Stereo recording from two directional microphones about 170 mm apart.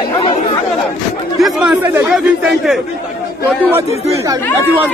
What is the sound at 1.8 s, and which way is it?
Speech, 10° right (ahead or behind).